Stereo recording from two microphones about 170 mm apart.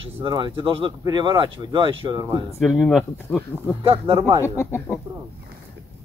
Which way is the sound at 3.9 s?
25° right (ahead or behind).